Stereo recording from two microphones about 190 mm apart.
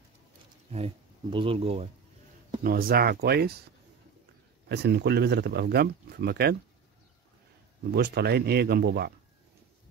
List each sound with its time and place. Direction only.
0.7 s speech: 30° right (ahead or behind)
2.6 s speech: 50° right (ahead or behind)
4.6 s speech: 60° right (ahead or behind)
7.9 s speech: 55° right (ahead or behind)